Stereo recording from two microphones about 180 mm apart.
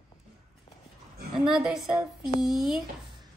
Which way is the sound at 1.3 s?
5° right (ahead or behind).